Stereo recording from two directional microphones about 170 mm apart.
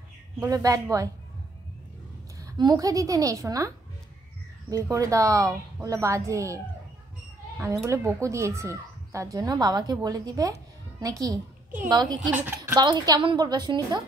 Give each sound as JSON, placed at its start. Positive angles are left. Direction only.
{"t": 0.4, "sound": "speech", "side_deg": -20}
{"t": 2.4, "sound": "speech", "side_deg": -25}
{"t": 12.3, "sound": "a woman's voice", "side_deg": -10}
{"t": 12.8, "sound": "speech", "side_deg": -25}